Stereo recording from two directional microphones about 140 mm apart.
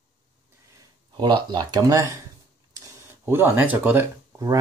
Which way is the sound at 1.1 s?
35° right (ahead or behind).